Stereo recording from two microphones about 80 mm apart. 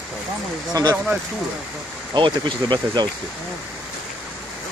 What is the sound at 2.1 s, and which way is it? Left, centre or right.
Speech, right.